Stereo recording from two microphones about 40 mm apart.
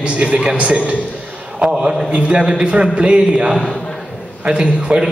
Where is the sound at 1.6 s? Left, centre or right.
Right.